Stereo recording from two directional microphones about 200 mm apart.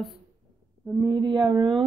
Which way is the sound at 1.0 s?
20° right (ahead or behind).